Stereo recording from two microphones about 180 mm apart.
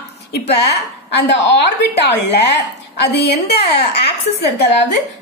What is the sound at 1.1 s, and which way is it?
A woman's voice, 75° left (ahead or behind).